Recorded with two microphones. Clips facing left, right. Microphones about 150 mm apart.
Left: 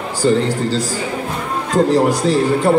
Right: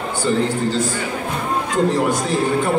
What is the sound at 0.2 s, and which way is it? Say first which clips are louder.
A man's voice: left 4 dB; 35° left (ahead or behind).